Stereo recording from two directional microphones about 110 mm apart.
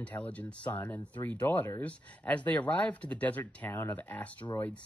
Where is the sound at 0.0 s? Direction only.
15° left (ahead or behind).